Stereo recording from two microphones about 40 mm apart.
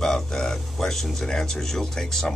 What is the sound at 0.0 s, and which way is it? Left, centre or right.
Speech, centre.